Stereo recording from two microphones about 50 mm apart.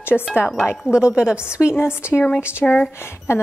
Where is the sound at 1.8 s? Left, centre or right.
Left.